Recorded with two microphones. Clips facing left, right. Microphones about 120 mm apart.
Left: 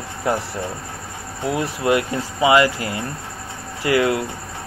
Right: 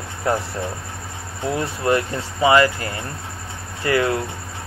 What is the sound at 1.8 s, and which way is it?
Speech, 15° left (ahead or behind).